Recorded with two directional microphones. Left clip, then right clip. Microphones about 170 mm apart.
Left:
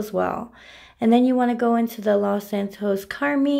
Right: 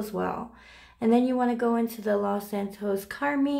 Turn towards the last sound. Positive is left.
turn(degrees=25)  # may be behind; listen again after turning